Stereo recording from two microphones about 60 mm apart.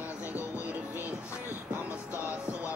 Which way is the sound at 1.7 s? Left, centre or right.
Left.